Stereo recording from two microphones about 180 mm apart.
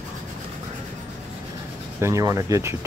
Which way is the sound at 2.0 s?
15° right (ahead or behind).